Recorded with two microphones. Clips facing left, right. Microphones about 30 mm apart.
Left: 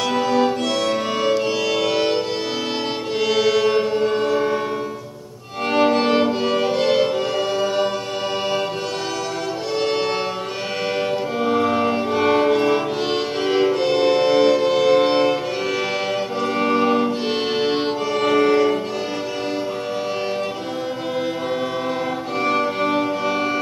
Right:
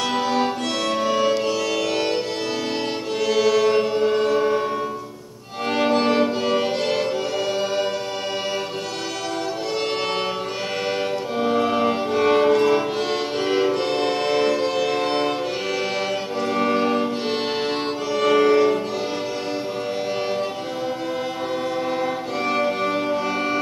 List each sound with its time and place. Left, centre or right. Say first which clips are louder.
0.1 s music: left 5 dB; centre
0.8 s music: right 3 dB; centre
3.2 s music: left 1 dB; centre
5.7 s music: left 2 dB; centre
6.5 s music: left 2 dB; centre
7.3 s music: left 2 dB; centre
11.3 s music: even; centre
16.5 s music: left 2 dB; centre
22.4 s music: left 2 dB; centre